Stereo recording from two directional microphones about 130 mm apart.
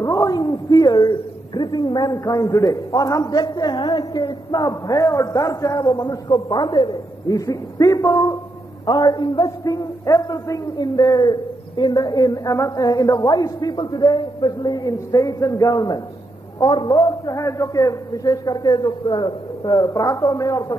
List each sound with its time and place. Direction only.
0.0 s a man's voice: 25° left (ahead or behind)